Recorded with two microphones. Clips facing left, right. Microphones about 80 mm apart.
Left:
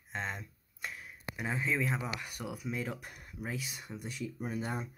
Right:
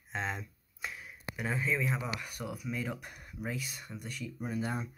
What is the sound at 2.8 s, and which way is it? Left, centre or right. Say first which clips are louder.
Speech: right 1 dB; centre.